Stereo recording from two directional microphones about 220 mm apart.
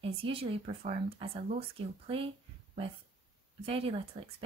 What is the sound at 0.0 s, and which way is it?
Speech, 25° right (ahead or behind).